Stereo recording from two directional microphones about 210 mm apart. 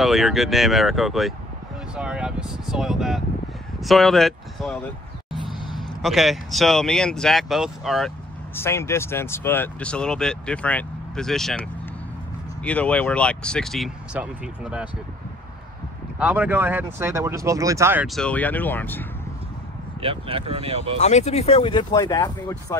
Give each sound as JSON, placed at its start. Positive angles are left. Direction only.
{"t": 0.0, "sound": "speech", "side_deg": 0}
{"t": 8.5, "sound": "speech", "side_deg": 10}
{"t": 12.6, "sound": "speech", "side_deg": 5}
{"t": 16.2, "sound": "speech", "side_deg": -5}
{"t": 18.0, "sound": "speech", "side_deg": 5}
{"t": 20.0, "sound": "speech", "side_deg": -25}
{"t": 21.0, "sound": "speech", "side_deg": 30}